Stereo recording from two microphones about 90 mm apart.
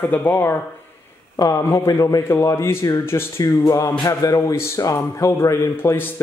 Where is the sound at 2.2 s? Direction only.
30° left (ahead or behind).